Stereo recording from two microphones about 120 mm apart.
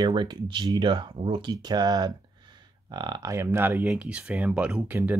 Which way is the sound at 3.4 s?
15° right (ahead or behind).